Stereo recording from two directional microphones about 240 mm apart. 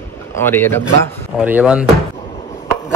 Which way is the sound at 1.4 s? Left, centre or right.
Centre.